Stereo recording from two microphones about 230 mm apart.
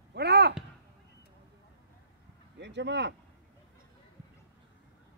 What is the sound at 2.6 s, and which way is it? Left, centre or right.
Speech, right.